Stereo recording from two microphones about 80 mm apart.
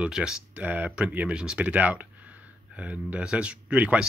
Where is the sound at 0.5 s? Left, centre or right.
Centre.